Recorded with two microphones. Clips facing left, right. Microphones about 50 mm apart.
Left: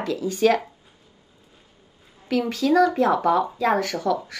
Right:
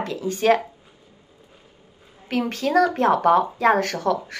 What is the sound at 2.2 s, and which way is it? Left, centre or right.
Speech, right.